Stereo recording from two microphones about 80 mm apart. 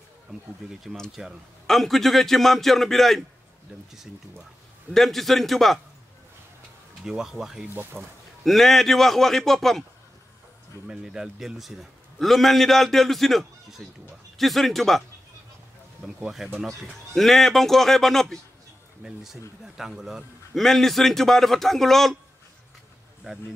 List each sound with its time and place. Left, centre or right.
1.1 s a man's voice: centre
4.9 s a man's voice: centre
7.1 s speech: centre
7.7 s speech: right
8.5 s a man's voice: centre
10.9 s a man's voice: centre
16.5 s a man's voice: centre
19.6 s a man's voice: centre